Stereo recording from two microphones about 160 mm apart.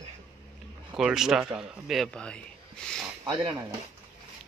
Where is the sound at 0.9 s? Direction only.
5° right (ahead or behind).